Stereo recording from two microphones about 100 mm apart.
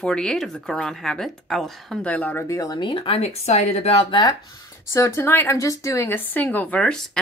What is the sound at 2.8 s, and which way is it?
Speech, 50° left (ahead or behind).